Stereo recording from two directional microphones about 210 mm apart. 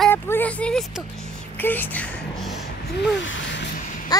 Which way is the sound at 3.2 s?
60° left (ahead or behind).